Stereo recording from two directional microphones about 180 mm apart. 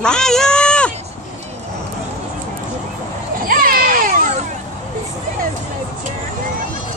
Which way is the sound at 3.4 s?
50° right (ahead or behind).